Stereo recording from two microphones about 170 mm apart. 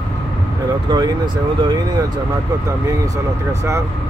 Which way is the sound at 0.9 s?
25° right (ahead or behind).